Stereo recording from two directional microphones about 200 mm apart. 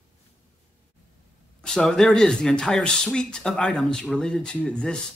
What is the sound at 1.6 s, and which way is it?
Speech, centre (ahead or behind).